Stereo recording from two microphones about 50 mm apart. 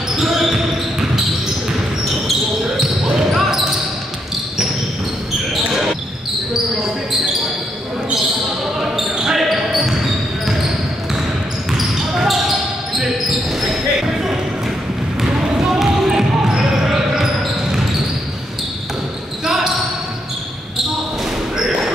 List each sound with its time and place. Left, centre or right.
0.1 s basketball bounce: centre
3.3 s basketball bounce: centre
9.2 s basketball bounce: centre
11.7 s basketball bounce: centre
15.7 s basketball bounce: centre
19.4 s basketball bounce: centre